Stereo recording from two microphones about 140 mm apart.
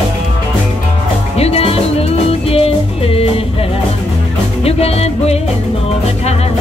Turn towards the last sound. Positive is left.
turn(degrees=50)  # may be behind; listen again after turning